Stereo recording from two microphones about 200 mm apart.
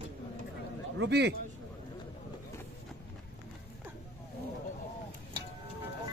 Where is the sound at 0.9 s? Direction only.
60° right (ahead or behind).